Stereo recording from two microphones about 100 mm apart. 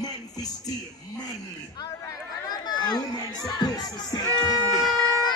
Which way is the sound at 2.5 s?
45° left (ahead or behind).